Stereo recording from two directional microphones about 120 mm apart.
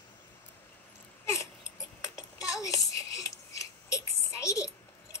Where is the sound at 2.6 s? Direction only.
25° left (ahead or behind).